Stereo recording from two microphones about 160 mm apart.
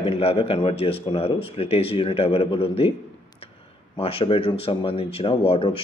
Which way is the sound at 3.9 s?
35° left (ahead or behind).